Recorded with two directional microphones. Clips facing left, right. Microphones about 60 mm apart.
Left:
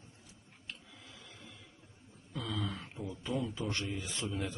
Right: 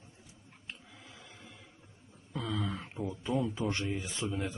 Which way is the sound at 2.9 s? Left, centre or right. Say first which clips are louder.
Right 4 dB; centre.